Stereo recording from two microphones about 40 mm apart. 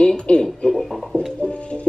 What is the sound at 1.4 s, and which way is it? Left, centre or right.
Music, left.